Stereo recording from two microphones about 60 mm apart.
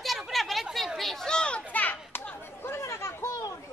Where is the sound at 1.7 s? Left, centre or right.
Left.